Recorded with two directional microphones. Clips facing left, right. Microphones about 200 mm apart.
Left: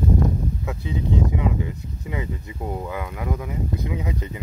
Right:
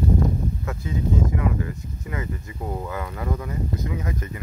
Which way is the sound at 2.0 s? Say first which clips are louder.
Left 1 dB; 15° left (ahead or behind).